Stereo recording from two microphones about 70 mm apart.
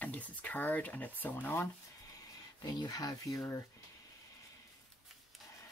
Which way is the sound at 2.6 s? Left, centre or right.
Left.